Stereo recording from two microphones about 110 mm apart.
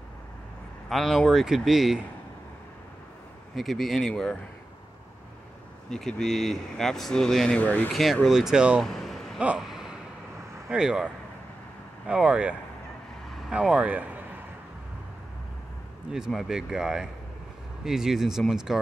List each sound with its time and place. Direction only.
0.8 s speech: centre (ahead or behind)
3.5 s speech: centre (ahead or behind)
5.9 s speech: 5° left (ahead or behind)
7.9 s speech: centre (ahead or behind)
8.8 s a sound: 5° left (ahead or behind)
10.7 s speech: 5° right (ahead or behind)
12.1 s speech: 10° right (ahead or behind)
16.1 s speech: 5° right (ahead or behind)